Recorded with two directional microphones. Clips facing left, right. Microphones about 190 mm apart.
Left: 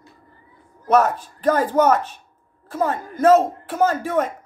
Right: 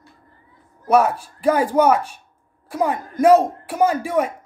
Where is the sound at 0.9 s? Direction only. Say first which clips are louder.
Right 1 dB; 10° right (ahead or behind).